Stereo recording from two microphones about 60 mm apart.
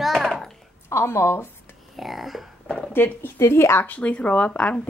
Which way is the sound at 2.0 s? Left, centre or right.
Centre.